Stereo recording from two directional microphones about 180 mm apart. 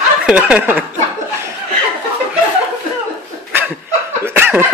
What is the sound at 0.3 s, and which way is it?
Speech, 5° right (ahead or behind).